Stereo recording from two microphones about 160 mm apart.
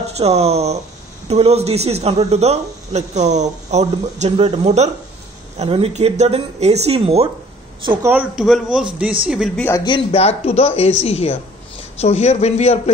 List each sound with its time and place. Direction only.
0.0 s speech: 40° right (ahead or behind)
8.0 s a man's voice: 10° right (ahead or behind)
9.6 s a man's voice: 15° left (ahead or behind)
9.8 s a woman's voice: 35° left (ahead or behind)